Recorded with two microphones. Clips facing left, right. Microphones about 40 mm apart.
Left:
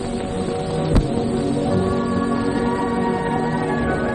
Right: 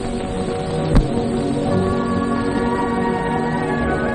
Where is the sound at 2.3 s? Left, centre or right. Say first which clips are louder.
Right 1 dB; centre.